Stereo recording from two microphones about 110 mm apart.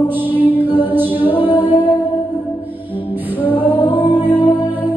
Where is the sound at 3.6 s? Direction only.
15° left (ahead or behind).